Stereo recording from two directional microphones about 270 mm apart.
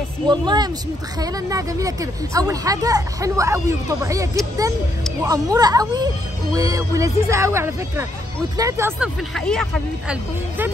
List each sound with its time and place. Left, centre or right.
0.3 s a woman's voice: centre
9.3 s speech: centre